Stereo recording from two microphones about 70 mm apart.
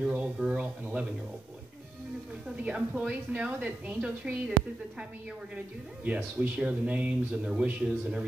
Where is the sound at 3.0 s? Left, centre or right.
Centre.